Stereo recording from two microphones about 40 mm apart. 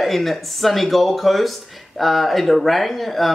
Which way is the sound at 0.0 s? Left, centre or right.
Centre.